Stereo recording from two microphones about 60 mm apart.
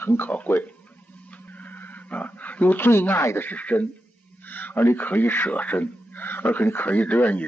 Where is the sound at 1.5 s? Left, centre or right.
Left.